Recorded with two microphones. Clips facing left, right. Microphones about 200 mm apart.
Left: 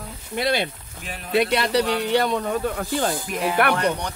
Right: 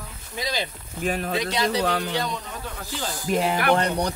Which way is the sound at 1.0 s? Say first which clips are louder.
Right 11 dB; 50° right (ahead or behind).